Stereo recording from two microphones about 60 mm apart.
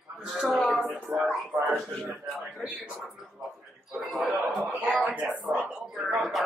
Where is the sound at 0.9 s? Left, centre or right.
Right.